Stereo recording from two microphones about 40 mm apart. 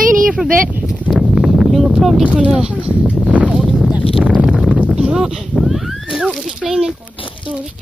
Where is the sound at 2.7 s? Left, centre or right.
Right.